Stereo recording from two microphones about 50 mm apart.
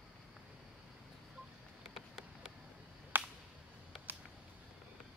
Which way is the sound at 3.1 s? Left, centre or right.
Right.